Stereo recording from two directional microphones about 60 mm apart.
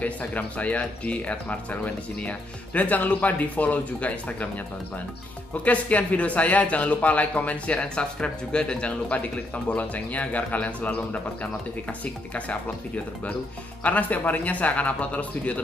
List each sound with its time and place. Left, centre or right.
0.0 s speech: left
5.7 s speech: left